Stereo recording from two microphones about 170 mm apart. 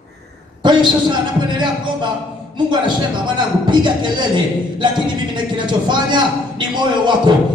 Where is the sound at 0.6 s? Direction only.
25° right (ahead or behind).